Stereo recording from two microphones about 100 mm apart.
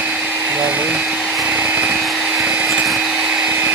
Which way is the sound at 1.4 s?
10° right (ahead or behind).